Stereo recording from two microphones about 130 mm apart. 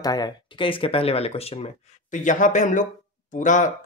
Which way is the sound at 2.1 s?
75° left (ahead or behind).